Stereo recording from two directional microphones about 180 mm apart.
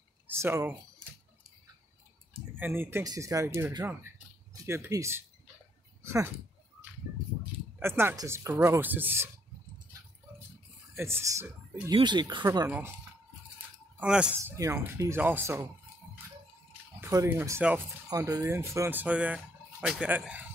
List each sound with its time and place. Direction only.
0.3 s speech: 15° right (ahead or behind)
2.5 s speech: 10° right (ahead or behind)
7.8 s speech: 10° right (ahead or behind)
11.0 s speech: 15° right (ahead or behind)
11.9 s speech: 25° right (ahead or behind)
12.4 s speech: 10° right (ahead or behind)
13.9 s speech: 5° right (ahead or behind)
17.0 s speech: 15° right (ahead or behind)